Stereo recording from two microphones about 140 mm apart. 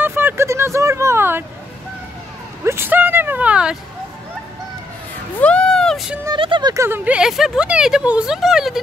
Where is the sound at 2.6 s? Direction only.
15° right (ahead or behind).